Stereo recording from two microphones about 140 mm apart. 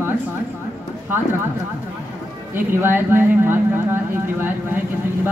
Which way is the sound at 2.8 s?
15° right (ahead or behind).